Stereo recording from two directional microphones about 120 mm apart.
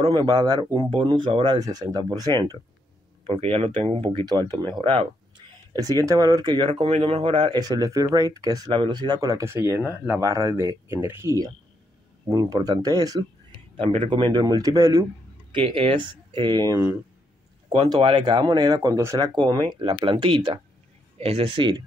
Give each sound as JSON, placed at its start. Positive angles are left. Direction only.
{"t": 0.1, "sound": "speech", "side_deg": -30}
{"t": 0.8, "sound": "speech", "side_deg": -45}
{"t": 3.3, "sound": "speech", "side_deg": -50}
{"t": 5.7, "sound": "speech", "side_deg": -30}
{"t": 6.7, "sound": "speech", "side_deg": -60}
{"t": 13.7, "sound": "speech", "side_deg": -45}
{"t": 15.5, "sound": "speech", "side_deg": -50}
{"t": 16.7, "sound": "speech", "side_deg": -20}
{"t": 17.8, "sound": "speech", "side_deg": -40}
{"t": 19.3, "sound": "speech", "side_deg": -40}